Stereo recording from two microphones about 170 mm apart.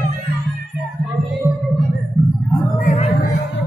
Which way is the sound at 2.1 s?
Centre (ahead or behind).